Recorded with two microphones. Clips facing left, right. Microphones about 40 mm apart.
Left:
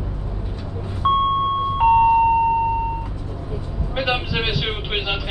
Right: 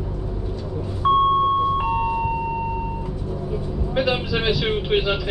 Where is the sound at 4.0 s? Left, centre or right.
Left.